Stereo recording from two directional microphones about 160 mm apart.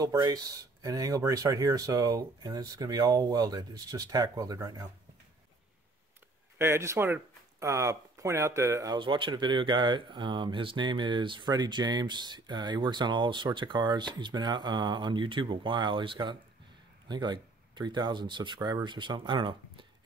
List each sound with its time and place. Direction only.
0.0 s speech: 20° right (ahead or behind)
6.6 s speech: 15° right (ahead or behind)